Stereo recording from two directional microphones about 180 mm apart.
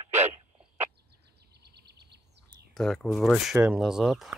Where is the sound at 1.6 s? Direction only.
65° right (ahead or behind).